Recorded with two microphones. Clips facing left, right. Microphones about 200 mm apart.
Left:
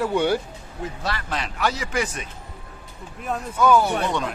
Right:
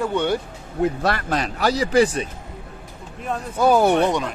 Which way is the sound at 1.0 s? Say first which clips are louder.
Right 6 dB; 50° right (ahead or behind).